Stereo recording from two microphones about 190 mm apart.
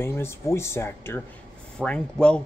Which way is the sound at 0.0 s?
15° left (ahead or behind).